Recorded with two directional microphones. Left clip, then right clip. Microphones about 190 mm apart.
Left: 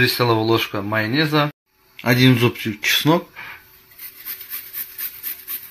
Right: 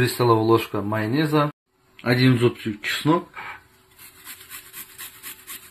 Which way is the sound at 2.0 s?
35° left (ahead or behind).